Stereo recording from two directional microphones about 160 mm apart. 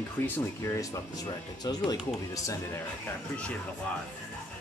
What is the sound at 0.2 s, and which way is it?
A man's voice, 15° left (ahead or behind).